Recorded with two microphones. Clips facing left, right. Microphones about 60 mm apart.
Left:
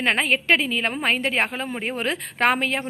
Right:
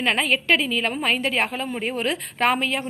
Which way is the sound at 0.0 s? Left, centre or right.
Left.